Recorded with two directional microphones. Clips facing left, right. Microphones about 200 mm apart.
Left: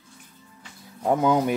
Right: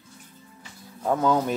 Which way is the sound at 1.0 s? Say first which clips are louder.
Left 2 dB; 15° left (ahead or behind).